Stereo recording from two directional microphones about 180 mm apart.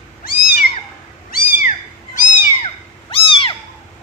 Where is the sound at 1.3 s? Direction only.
45° left (ahead or behind).